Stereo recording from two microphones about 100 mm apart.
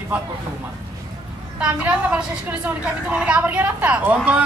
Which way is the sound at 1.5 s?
15° right (ahead or behind).